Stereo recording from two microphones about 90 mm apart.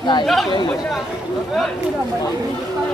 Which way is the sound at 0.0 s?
55° left (ahead or behind).